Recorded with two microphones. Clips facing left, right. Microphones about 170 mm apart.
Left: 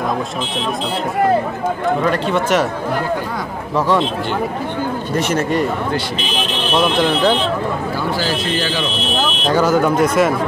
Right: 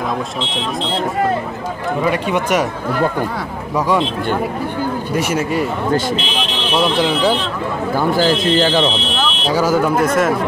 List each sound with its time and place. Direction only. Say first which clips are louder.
2.0 s a man's voice: right 3 dB; 10° right (ahead or behind)
5.1 s a man's voice: left 2 dB; 10° right (ahead or behind)
7.0 s a man's voice: left 1 dB; 5° right (ahead or behind)
8.2 s speech: right 6 dB; 50° right (ahead or behind)
9.5 s speech: left 1 dB; 5° right (ahead or behind)